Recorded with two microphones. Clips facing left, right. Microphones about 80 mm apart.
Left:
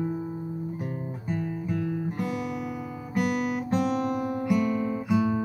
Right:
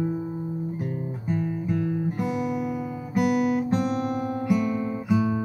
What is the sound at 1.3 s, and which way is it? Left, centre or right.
Guitar, centre.